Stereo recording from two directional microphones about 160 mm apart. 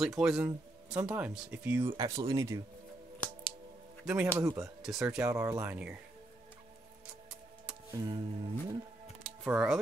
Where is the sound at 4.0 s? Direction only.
5° right (ahead or behind).